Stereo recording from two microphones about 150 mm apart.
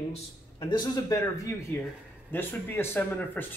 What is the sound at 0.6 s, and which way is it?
Speech, 30° left (ahead or behind).